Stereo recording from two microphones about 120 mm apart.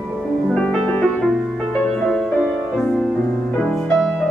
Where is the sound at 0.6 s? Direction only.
10° left (ahead or behind).